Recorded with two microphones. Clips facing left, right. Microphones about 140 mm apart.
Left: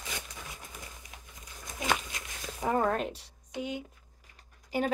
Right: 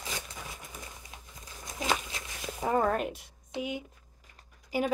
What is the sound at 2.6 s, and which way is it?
Speech, 10° right (ahead or behind).